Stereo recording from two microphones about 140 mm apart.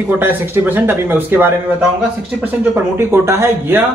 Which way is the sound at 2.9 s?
20° right (ahead or behind).